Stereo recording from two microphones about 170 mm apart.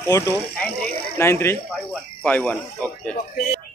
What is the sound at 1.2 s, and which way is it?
Speech, 15° left (ahead or behind).